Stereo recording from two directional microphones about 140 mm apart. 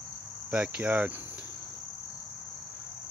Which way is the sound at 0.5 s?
10° right (ahead or behind).